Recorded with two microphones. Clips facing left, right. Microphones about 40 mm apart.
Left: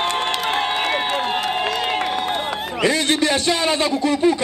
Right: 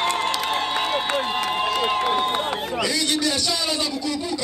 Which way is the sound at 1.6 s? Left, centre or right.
Left.